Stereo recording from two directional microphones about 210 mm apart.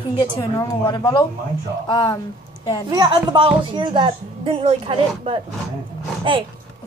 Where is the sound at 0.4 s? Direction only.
20° left (ahead or behind).